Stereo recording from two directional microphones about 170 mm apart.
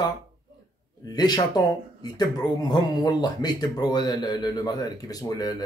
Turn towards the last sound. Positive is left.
turn(degrees=20)  # may be behind; listen again after turning